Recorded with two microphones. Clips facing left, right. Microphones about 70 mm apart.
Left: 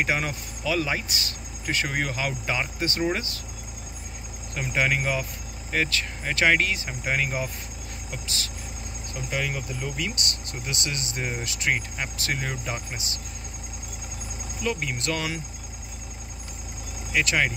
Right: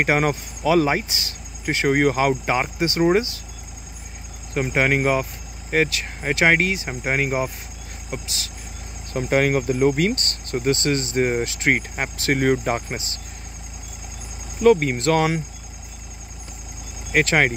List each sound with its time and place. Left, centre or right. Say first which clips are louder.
0.0 s speech: right 7 dB; right
2.0 s speech: right 10 dB; right
4.6 s speech: right 5 dB; right
6.2 s speech: right 4 dB; right
9.1 s speech: right 11 dB; right
11.7 s speech: right 5 dB; right
14.6 s speech: right 13 dB; right
17.2 s speech: right 6 dB; right